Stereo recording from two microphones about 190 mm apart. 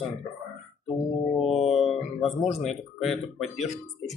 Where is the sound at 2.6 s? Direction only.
Centre (ahead or behind).